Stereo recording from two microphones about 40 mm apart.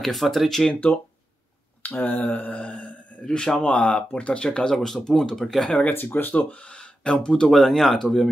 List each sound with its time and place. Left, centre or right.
0.0 s speech: centre
0.9 s speech: left
1.8 s a sound: left
3.3 s speech: centre
3.6 s speech: left
4.7 s speech: centre
5.9 s speech: left
6.7 s speech: left
7.5 s speech: centre